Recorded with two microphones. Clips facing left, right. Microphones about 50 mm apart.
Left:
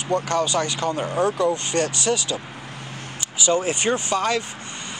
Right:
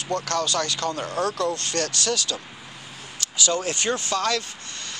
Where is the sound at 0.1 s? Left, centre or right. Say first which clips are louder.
Left 4 dB; centre.